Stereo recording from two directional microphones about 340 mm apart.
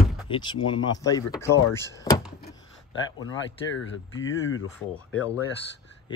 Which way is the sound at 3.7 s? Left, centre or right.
Left.